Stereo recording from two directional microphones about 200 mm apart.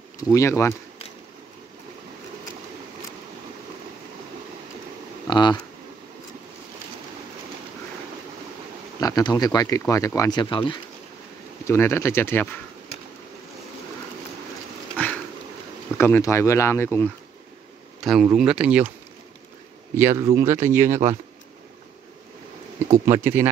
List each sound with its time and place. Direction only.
0.2 s speech: 15° left (ahead or behind)
5.3 s a sound: 20° left (ahead or behind)
9.0 s speech: 20° left (ahead or behind)
11.6 s speech: 15° left (ahead or behind)
16.0 s speech: 15° left (ahead or behind)
18.0 s speech: centre (ahead or behind)
20.0 s speech: 10° right (ahead or behind)
22.8 s speech: 15° right (ahead or behind)